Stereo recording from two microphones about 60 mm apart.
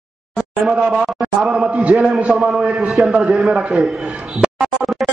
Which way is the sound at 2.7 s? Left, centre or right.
Centre.